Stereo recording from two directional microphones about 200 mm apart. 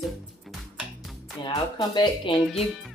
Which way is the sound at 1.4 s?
20° left (ahead or behind).